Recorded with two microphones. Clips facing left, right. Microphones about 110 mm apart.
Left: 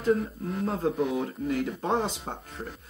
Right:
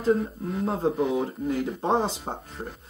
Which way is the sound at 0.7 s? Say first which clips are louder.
Right 3 dB; 25° right (ahead or behind).